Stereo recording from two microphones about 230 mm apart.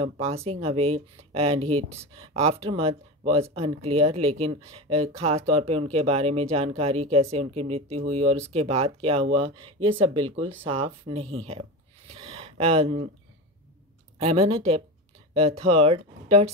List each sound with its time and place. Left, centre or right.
0.0 s speech: right
12.1 s a sound: right
14.1 s speech: right